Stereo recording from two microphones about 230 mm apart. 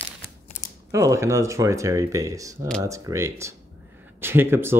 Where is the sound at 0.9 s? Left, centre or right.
Centre.